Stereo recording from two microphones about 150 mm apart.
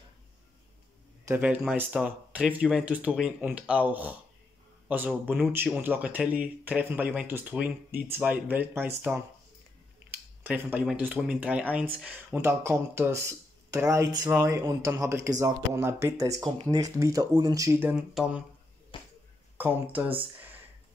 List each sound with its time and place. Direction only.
1.2 s speech: 10° right (ahead or behind)
10.4 s speech: 10° right (ahead or behind)
17.9 s speech: 5° right (ahead or behind)
18.9 s finger snapping: 35° left (ahead or behind)
19.5 s speech: 10° right (ahead or behind)